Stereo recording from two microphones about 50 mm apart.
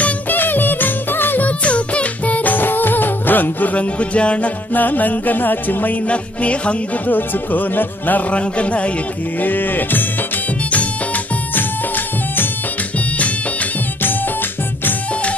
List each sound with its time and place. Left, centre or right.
0.0 s music: left
1.6 s music: left
6.0 s music: left
7.1 s music: left
8.4 s music: left
9.4 s music: left